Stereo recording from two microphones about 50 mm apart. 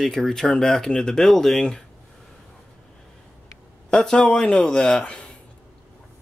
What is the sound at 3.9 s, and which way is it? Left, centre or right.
Speech, centre.